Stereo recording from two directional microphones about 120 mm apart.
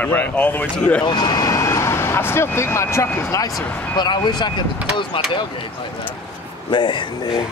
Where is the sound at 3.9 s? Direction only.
40° left (ahead or behind).